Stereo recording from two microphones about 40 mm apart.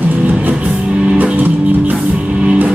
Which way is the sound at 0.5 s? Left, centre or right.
Right.